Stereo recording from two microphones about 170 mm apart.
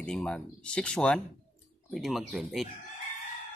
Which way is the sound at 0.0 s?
5° left (ahead or behind).